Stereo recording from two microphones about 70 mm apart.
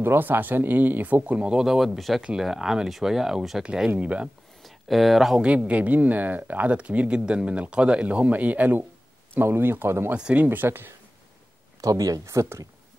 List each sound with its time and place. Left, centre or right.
0.0 s speech: right
4.6 s speech: centre
5.7 s speech: centre
11.8 s speech: right